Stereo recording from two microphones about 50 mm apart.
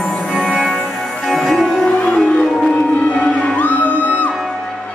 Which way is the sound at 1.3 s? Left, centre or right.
Centre.